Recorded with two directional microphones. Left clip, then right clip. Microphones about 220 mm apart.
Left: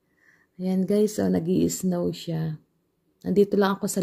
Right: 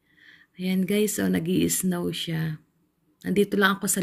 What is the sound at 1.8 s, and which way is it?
Speech, centre (ahead or behind).